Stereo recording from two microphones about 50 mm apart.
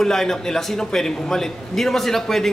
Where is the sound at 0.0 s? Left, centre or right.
Centre.